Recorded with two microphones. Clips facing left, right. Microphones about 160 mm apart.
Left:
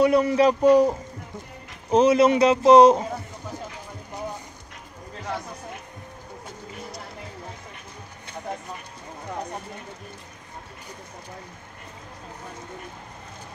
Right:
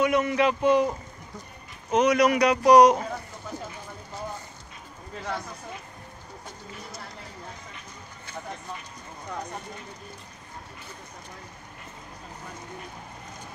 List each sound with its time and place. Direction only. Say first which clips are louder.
0.0 s speech: left 5 dB; 35° left (ahead or behind)